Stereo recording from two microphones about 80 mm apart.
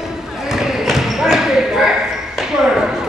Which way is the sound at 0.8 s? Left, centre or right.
Centre.